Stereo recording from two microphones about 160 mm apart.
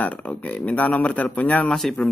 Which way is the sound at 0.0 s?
10° left (ahead or behind).